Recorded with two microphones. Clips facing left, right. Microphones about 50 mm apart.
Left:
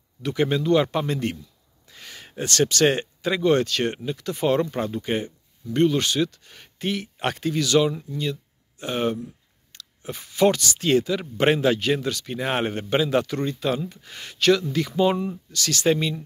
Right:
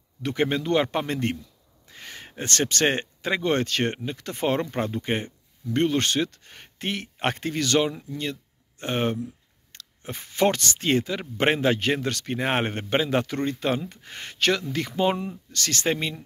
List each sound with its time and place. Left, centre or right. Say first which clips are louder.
0.2 s speech: left 2 dB; right